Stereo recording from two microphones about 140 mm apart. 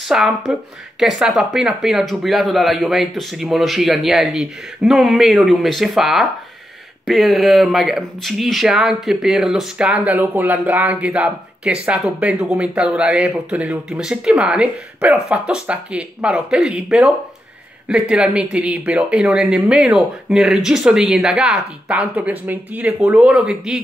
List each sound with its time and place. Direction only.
0.1 s speech: centre (ahead or behind)